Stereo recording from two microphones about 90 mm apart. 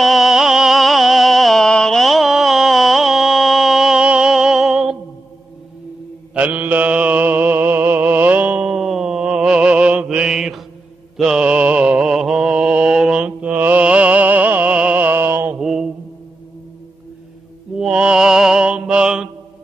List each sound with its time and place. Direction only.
0.0 s music: 5° right (ahead or behind)
6.3 s mantra: 20° right (ahead or behind)
8.6 s mantra: 5° right (ahead or behind); by 15.5 s 25° right (ahead or behind)
15.6 s mantra: 5° right (ahead or behind)
17.7 s music: 10° right (ahead or behind)